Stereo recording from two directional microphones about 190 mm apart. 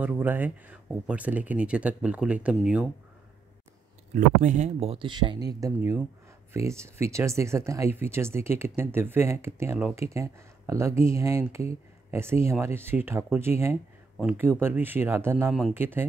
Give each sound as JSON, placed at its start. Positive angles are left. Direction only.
{"t": 0.0, "sound": "speech", "side_deg": -10}
{"t": 4.1, "sound": "speech", "side_deg": -40}